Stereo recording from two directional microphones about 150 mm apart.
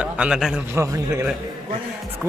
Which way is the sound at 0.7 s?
20° right (ahead or behind).